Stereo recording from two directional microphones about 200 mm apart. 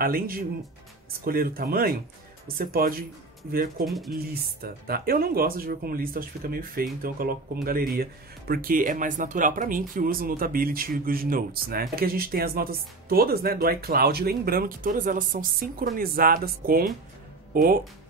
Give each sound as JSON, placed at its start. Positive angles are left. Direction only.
{"t": 0.0, "sound": "speech", "side_deg": -45}
{"t": 3.8, "sound": "speech", "side_deg": 0}
{"t": 4.1, "sound": "speech", "side_deg": -50}